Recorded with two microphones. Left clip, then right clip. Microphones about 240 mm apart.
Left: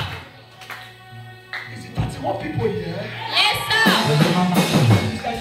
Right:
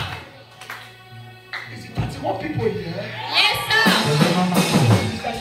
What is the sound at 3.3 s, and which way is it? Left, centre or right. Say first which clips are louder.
Music: even; left.